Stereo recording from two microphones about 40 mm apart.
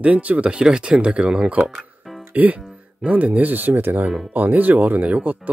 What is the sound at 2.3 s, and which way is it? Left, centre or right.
Speech, right.